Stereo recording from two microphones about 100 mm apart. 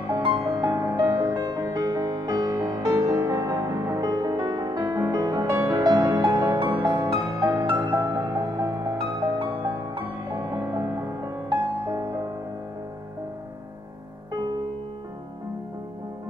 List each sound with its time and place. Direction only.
0.0 s music: 45° right (ahead or behind)
0.7 s music: 25° right (ahead or behind)
0.9 s music: 40° right (ahead or behind)
4.1 s music: 50° right (ahead or behind)
9.0 s music: 50° right (ahead or behind); by 11.3 s 30° right (ahead or behind)